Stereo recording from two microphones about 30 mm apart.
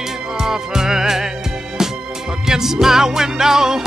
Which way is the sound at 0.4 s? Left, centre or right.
Centre.